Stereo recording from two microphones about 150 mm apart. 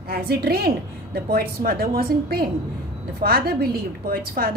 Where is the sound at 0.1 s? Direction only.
90° right.